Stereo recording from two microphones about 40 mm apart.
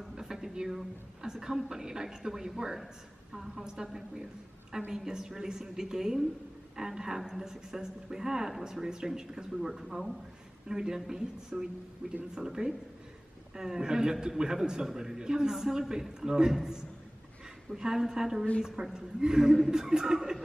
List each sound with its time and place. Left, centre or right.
0.1 s a sound: centre
1.2 s speech: centre
12.0 s speech: right
12.4 s speech: centre